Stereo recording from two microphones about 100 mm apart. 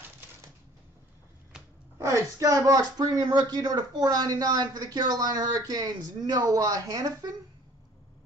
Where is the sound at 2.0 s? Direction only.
30° right (ahead or behind).